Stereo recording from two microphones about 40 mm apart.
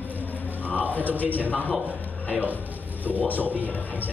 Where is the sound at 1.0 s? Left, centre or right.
Left.